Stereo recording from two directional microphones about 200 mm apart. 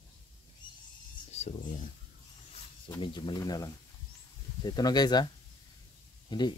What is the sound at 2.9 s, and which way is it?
Speech, 20° left (ahead or behind).